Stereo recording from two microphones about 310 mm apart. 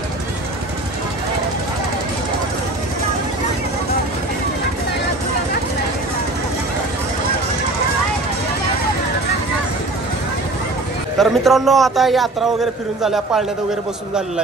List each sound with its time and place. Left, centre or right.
11.1 s a man's voice: centre